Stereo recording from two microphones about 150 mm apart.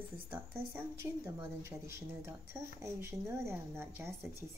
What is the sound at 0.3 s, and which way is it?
Speech, 15° right (ahead or behind).